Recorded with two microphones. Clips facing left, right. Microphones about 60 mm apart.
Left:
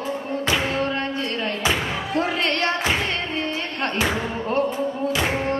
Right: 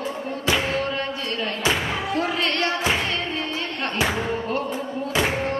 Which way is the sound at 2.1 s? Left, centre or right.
Left.